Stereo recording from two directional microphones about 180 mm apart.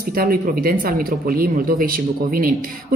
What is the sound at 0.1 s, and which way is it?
Speech, 55° right (ahead or behind).